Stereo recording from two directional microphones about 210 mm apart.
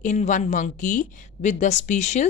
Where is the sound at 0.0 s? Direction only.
35° left (ahead or behind).